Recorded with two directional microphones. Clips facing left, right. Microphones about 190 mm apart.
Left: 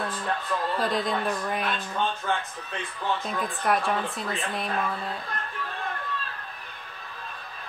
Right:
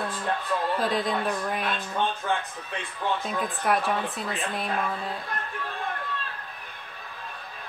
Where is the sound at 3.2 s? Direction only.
Centre (ahead or behind).